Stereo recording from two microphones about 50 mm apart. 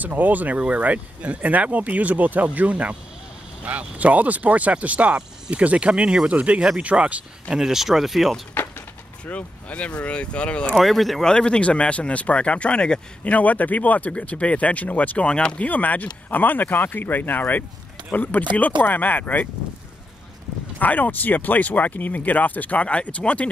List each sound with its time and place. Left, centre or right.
0.0 s speech: right
7.4 s speech: centre
9.2 s speech: left
10.8 s speech: centre
11.2 s speech: centre
15.2 s speech: centre
15.6 s speech: left
20.8 s speech: left